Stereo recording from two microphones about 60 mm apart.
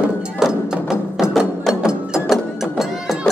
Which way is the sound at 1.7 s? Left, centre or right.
Centre.